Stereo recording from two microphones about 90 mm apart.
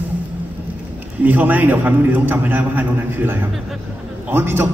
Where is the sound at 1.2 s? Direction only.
20° right (ahead or behind).